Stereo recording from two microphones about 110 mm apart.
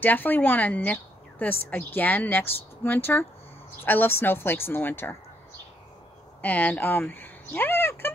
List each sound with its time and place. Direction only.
0.0 s a woman's voice: 15° left (ahead or behind)
6.4 s speech: 15° left (ahead or behind)